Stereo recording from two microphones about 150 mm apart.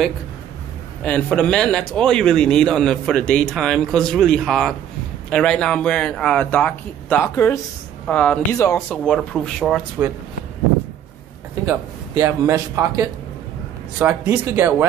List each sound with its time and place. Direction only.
1.0 s a man's voice: 5° left (ahead or behind)
8.1 s a man's voice: 10° left (ahead or behind)
12.2 s a man's voice: 20° right (ahead or behind)